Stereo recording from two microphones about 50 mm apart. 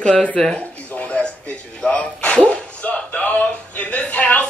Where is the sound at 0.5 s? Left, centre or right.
Left.